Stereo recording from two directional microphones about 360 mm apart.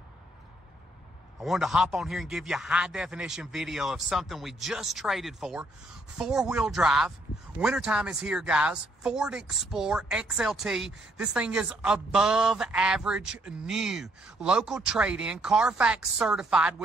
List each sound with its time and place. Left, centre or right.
1.4 s speech: centre